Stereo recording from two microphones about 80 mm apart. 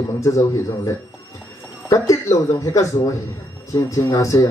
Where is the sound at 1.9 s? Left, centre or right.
Left.